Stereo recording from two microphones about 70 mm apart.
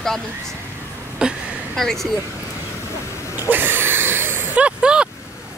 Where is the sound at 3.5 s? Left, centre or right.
Right.